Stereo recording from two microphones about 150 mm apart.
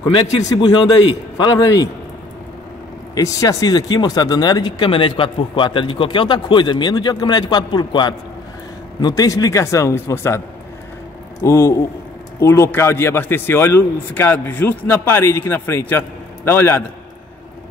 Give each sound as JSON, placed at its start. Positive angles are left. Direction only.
{"t": 0.4, "sound": "speech", "side_deg": 25}
{"t": 3.2, "sound": "speech", "side_deg": 20}
{"t": 11.4, "sound": "a man's voice", "side_deg": 20}